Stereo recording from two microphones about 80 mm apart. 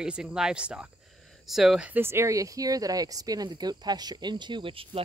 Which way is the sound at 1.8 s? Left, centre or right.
Right.